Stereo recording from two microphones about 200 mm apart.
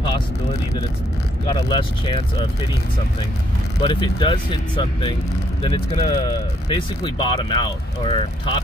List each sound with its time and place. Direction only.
1.5 s speech: 25° left (ahead or behind)
3.8 s speech: 25° left (ahead or behind)